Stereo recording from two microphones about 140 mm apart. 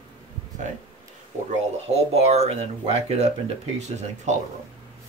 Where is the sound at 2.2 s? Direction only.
50° right (ahead or behind).